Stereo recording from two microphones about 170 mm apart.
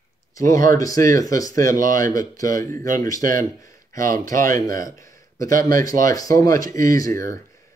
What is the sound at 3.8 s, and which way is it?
Speech, 55° right (ahead or behind).